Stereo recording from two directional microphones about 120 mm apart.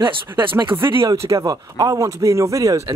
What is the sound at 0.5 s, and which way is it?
Speech, 45° right (ahead or behind).